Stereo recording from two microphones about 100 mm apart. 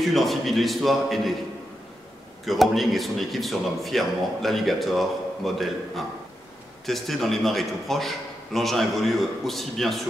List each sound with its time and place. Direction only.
0.0 s a man's voice: centre (ahead or behind)
2.4 s a man's voice: centre (ahead or behind)